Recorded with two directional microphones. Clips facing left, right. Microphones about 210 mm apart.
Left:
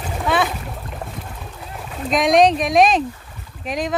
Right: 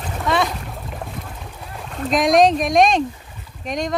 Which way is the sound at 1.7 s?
5° left (ahead or behind).